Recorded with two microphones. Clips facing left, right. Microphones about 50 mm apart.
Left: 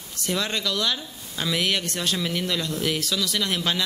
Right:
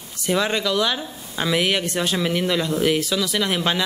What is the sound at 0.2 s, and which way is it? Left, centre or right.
Speech, centre.